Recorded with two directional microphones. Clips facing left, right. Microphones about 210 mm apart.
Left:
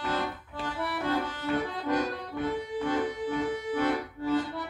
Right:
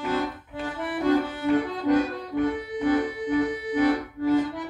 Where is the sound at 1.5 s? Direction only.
15° right (ahead or behind).